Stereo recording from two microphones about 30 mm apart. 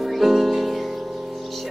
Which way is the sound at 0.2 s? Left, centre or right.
Centre.